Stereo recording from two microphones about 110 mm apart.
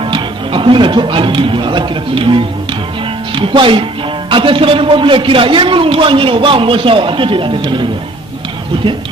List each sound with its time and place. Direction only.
0.1 s a man's voice: 50° right (ahead or behind)